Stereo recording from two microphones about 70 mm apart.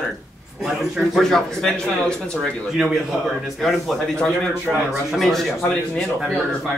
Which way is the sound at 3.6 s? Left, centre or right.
Centre.